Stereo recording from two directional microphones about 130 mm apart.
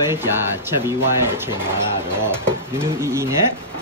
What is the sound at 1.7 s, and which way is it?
Speech, 20° right (ahead or behind).